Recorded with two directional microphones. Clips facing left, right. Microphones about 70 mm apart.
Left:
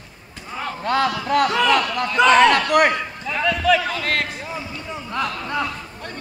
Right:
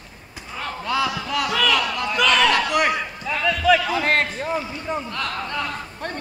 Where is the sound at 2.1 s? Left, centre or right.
Left.